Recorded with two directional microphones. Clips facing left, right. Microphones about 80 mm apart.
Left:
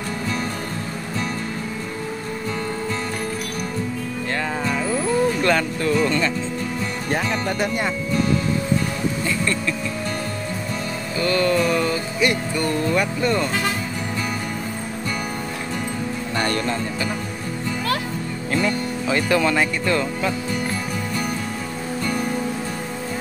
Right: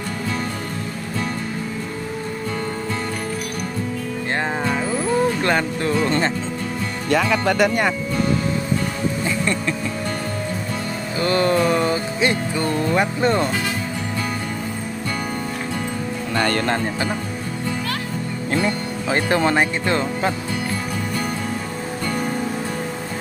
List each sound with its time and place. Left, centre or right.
4.4 s music: right
5.4 s speech: centre
5.8 s speech: right
7.1 s speech: right
11.1 s music: right
16.3 s speech: right
18.5 s speech: right